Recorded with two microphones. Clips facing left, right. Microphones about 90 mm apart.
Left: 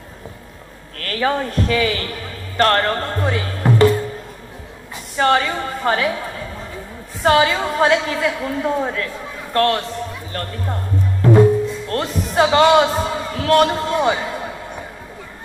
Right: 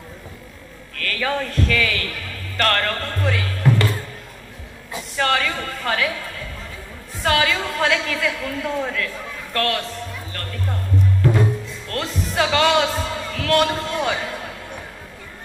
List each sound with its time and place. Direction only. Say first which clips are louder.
0.9 s a man's voice: left 4 dB; 35° left (ahead or behind)
5.1 s a woman's voice: left 5 dB; 25° left (ahead or behind)
11.9 s a man's voice: left 4 dB; 25° left (ahead or behind)